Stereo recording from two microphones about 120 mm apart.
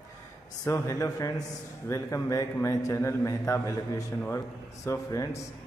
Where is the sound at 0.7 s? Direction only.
25° left (ahead or behind).